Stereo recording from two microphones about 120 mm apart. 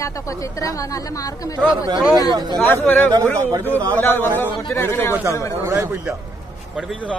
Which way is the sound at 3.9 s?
15° left (ahead or behind).